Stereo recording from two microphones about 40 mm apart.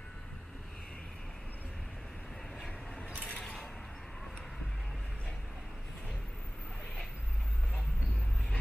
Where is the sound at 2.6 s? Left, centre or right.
Left.